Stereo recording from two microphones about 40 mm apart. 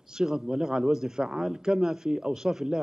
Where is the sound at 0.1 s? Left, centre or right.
Centre.